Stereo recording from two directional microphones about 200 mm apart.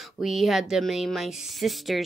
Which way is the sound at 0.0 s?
Centre (ahead or behind).